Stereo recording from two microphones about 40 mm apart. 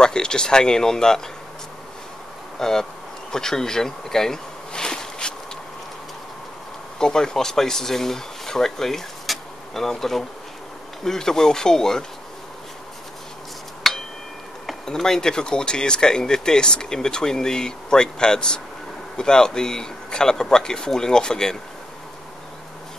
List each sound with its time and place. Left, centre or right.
0.0 s speech: centre
2.6 s speech: centre
7.0 s speech: centre
13.9 s a sound: centre
14.9 s speech: centre